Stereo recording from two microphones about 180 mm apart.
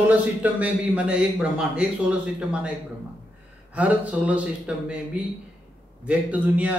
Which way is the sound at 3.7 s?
10° right (ahead or behind).